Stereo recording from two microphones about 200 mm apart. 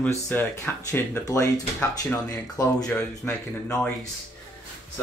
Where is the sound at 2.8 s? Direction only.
5° left (ahead or behind).